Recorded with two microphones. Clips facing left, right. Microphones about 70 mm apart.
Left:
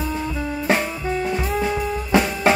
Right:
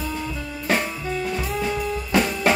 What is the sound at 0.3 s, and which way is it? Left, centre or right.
Music, left.